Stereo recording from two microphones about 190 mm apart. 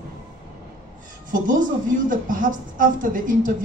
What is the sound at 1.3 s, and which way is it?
A woman's voice, 45° right (ahead or behind).